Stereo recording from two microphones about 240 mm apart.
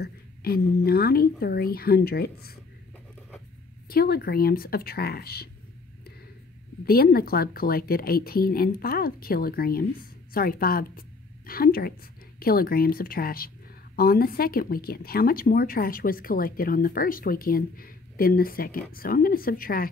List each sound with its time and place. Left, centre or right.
0.0 s speech: left
3.9 s speech: left
6.8 s a woman's voice: left